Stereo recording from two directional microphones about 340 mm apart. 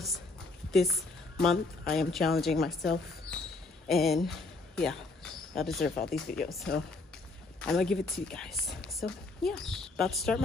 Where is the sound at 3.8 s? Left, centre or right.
Centre.